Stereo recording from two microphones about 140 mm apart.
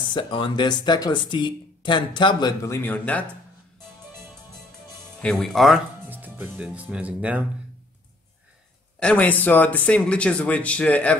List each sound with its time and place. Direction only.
0.1 s speech: 35° left (ahead or behind)
2.6 s speech: 20° left (ahead or behind)
5.2 s speech: centre (ahead or behind)
6.0 s speech: 15° right (ahead or behind)
9.0 s speech: 10° left (ahead or behind)